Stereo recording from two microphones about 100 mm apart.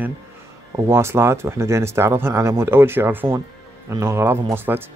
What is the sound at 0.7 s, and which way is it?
Speech, 25° right (ahead or behind).